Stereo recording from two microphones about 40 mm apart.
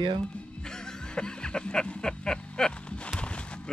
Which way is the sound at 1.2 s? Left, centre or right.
Left.